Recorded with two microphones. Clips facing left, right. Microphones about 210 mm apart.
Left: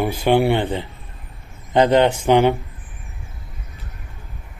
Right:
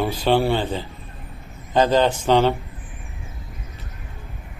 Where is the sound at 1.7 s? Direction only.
15° left (ahead or behind).